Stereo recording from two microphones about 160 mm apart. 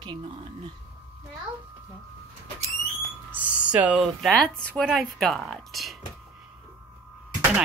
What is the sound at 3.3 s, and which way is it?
Speech, 10° right (ahead or behind).